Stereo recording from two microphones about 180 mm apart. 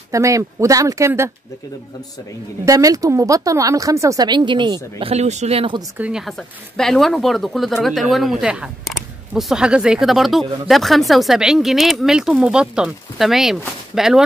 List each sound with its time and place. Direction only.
0.1 s speech: 15° right (ahead or behind)
2.6 s speech: 20° right (ahead or behind)
5.8 s speech: 10° right (ahead or behind)